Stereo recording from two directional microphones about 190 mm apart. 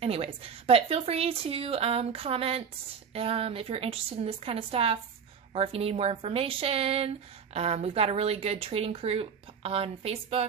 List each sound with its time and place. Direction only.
0.0 s a woman's voice: 30° right (ahead or behind)